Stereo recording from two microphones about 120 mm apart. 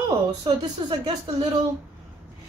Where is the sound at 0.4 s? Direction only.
40° right (ahead or behind).